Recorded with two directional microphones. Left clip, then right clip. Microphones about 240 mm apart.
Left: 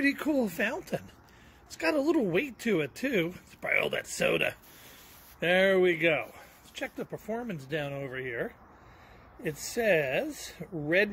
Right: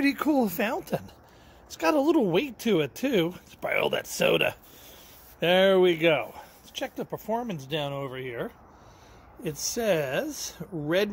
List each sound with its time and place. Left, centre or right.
0.0 s speech: centre
9.8 s speech: right
10.1 s speech: centre